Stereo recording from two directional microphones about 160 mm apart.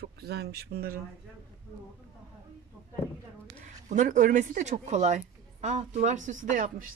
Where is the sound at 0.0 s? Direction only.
90° right.